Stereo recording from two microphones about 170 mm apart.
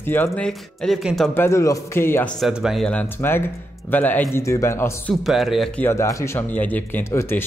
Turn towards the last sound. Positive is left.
turn(degrees=15)  # may be behind; listen again after turning